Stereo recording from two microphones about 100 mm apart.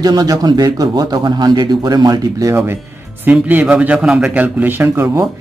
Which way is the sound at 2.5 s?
25° right (ahead or behind).